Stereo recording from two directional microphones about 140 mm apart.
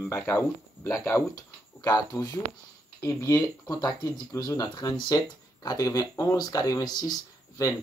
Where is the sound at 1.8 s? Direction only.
25° left (ahead or behind).